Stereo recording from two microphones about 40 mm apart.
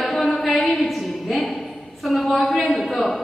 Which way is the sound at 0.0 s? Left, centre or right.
Centre.